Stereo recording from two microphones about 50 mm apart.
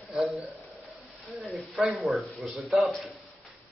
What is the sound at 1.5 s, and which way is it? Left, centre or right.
A man's voice, centre.